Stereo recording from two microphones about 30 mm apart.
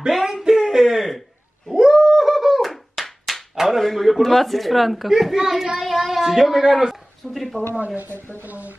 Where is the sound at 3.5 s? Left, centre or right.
Centre.